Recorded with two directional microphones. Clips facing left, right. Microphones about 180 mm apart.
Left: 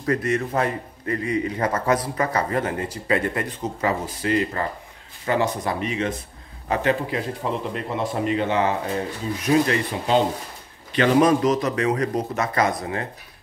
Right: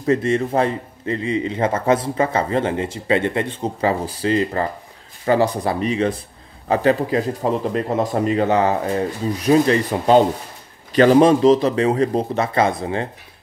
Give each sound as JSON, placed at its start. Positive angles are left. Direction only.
{"t": 0.0, "sound": "a man's voice", "side_deg": -25}